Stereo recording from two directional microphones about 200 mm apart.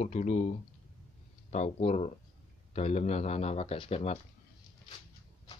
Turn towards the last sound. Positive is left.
turn(degrees=30)  # may be behind; listen again after turning